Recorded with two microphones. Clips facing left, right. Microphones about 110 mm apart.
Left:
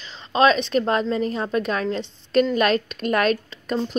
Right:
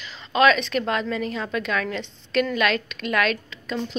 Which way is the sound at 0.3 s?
30° left (ahead or behind).